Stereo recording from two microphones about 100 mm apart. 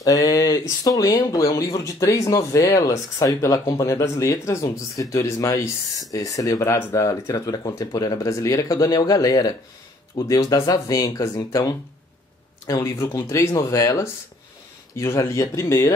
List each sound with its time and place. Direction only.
0.0 s speech: 35° left (ahead or behind)